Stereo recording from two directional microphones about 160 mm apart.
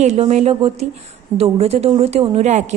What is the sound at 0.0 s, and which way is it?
A woman's voice, 45° right (ahead or behind).